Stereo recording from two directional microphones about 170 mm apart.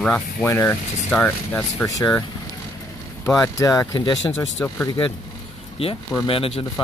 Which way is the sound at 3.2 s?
20° left (ahead or behind).